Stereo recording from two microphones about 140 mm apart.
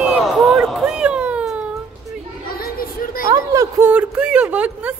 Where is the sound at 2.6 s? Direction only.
90° left.